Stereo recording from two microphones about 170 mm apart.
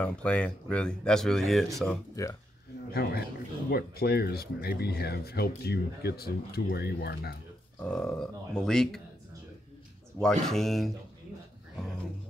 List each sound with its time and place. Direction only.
0.0 s speech: 5° left (ahead or behind)
2.2 s speech: 20° left (ahead or behind)
2.9 s speech: 65° left (ahead or behind)
7.8 s speech: 5° left (ahead or behind)
10.2 s speech: centre (ahead or behind)